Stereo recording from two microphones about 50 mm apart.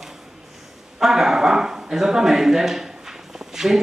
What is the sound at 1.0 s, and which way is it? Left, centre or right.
A man's voice, centre.